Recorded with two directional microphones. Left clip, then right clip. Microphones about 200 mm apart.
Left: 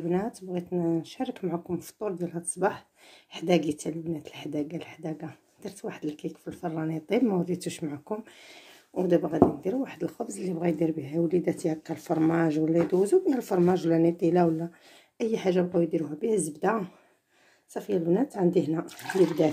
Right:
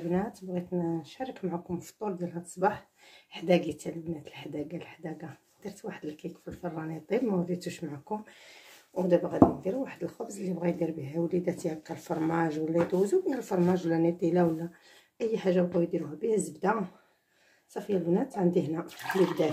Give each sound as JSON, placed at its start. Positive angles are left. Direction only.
{"t": 0.1, "sound": "speech", "side_deg": 45}
{"t": 17.7, "sound": "speech", "side_deg": 45}